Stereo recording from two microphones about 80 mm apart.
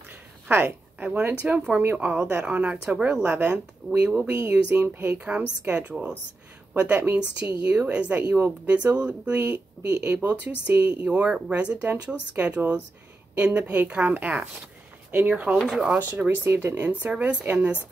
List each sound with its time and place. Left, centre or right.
0.5 s a woman's voice: right
2.4 s speech: centre
3.8 s speech: centre
4.3 s a woman's voice: centre
15.7 s speech: centre
16.1 s a woman's voice: right